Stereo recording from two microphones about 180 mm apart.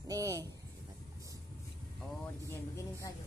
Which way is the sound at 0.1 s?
20° right (ahead or behind).